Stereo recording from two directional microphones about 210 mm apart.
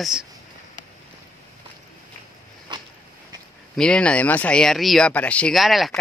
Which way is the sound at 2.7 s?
20° right (ahead or behind).